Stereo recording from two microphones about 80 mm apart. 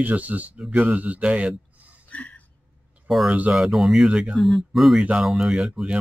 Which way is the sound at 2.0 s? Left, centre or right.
Centre.